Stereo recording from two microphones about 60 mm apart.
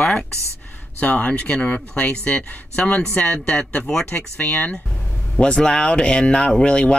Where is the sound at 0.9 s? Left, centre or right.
Left.